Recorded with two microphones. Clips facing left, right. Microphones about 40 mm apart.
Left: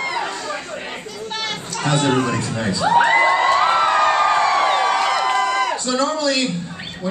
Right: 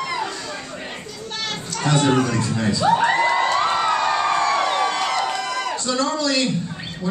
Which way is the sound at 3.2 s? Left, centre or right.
Centre.